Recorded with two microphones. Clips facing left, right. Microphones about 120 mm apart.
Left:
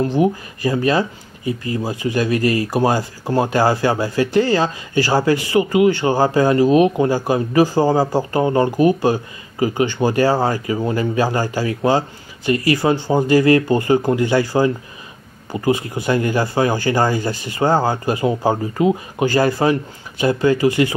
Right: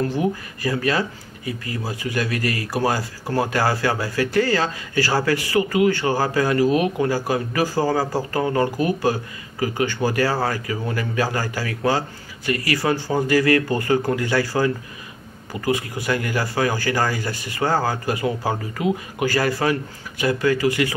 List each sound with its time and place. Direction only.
0.0 s speech: 20° left (ahead or behind)